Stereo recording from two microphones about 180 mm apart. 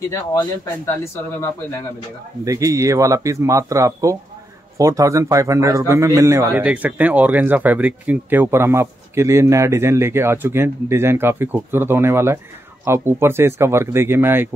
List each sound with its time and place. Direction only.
0.1 s speech: 15° left (ahead or behind)
2.4 s a man's voice: 20° right (ahead or behind)